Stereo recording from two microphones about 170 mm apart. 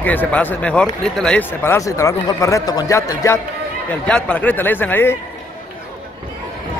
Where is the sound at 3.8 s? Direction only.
5° left (ahead or behind).